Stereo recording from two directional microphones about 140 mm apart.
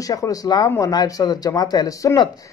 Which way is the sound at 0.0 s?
25° left (ahead or behind).